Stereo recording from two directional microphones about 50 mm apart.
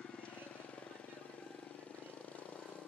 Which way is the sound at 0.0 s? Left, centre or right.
Left.